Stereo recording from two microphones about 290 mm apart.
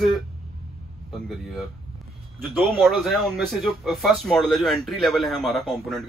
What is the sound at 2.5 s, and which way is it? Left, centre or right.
Speech, centre.